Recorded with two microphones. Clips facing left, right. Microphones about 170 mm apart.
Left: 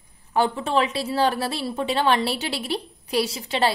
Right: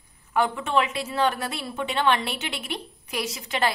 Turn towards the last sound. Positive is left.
turn(degrees=30)  # may be behind; listen again after turning